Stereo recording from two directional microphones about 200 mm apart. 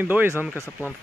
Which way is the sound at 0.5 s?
15° left (ahead or behind).